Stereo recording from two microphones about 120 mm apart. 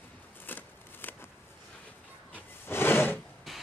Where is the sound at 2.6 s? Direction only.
20° left (ahead or behind).